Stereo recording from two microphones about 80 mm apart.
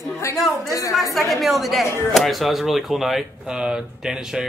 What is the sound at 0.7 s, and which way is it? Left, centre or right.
Speech, left.